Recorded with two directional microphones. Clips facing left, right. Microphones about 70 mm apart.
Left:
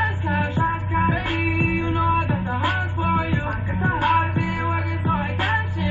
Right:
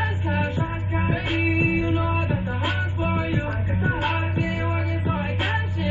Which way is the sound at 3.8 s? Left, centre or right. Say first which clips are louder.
Left 4 dB; left.